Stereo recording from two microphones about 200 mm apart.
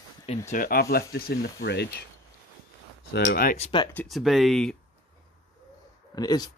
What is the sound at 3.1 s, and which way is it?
Speech, 50° left (ahead or behind).